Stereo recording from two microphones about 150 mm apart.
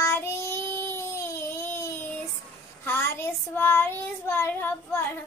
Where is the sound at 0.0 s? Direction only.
15° left (ahead or behind).